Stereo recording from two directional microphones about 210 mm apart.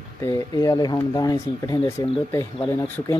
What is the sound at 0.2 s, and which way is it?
Speech, 15° left (ahead or behind).